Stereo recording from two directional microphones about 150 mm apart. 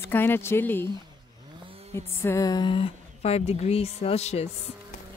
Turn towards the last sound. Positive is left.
turn(degrees=45)  # may be behind; listen again after turning